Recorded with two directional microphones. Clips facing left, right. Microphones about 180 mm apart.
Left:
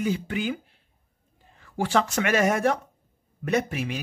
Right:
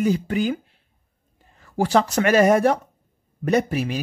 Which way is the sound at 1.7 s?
40° right (ahead or behind).